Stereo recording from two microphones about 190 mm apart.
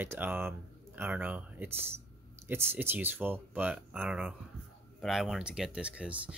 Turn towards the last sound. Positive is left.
turn(degrees=-5)  # may be behind; listen again after turning